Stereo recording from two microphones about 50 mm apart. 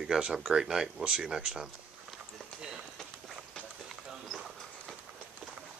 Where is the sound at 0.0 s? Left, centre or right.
Centre.